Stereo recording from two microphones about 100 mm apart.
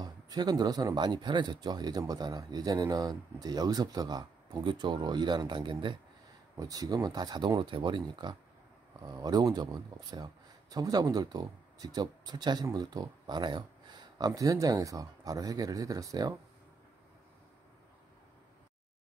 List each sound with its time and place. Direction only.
0.0 s speech: 45° right (ahead or behind)
6.5 s speech: 40° right (ahead or behind)